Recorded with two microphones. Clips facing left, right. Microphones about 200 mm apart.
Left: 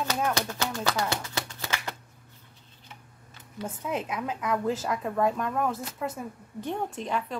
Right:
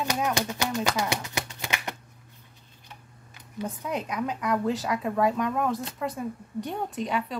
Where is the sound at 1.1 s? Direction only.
15° right (ahead or behind).